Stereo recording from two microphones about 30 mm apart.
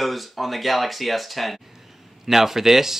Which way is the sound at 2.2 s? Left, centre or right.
Centre.